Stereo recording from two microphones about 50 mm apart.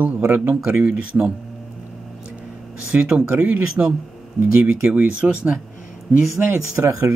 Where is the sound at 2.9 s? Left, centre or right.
Centre.